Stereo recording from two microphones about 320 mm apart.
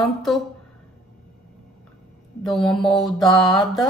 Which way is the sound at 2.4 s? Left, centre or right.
Centre.